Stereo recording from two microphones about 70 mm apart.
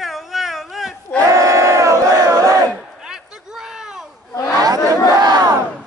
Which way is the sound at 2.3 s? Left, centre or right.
Right.